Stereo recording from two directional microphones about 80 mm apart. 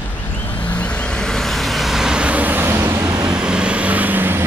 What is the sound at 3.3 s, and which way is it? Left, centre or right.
Vehicle, centre.